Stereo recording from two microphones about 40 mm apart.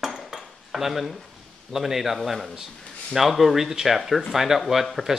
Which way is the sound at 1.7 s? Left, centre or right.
Centre.